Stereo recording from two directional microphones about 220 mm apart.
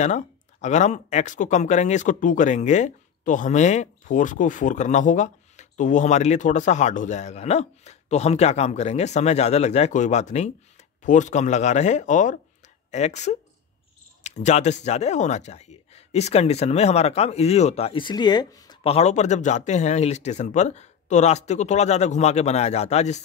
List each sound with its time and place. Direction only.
0.0 s speech: 30° left (ahead or behind); by 18.8 s 15° left (ahead or behind)
18.8 s speech: 25° left (ahead or behind)